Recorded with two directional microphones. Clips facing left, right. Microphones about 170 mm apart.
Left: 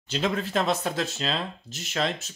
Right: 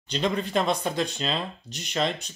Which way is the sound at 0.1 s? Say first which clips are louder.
Right 1 dB; 5° left (ahead or behind).